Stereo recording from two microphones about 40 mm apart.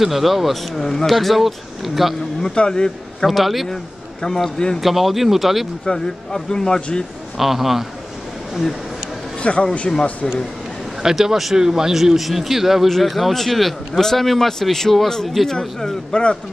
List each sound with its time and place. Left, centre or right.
0.0 s a man's voice: centre
2.5 s speech: left
3.3 s a man's voice: centre
3.6 s speech: centre
4.7 s a man's voice: centre
5.9 s a man's voice: centre
7.3 s speech: centre
9.4 s a man's voice: left
9.9 s a man's voice: centre
11.0 s a man's voice: centre
16.1 s speech: left